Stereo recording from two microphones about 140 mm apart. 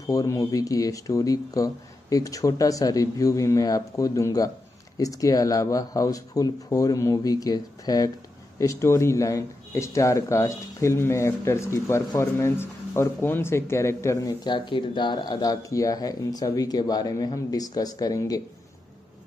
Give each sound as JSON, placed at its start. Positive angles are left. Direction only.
{"t": 0.0, "sound": "speech", "side_deg": 25}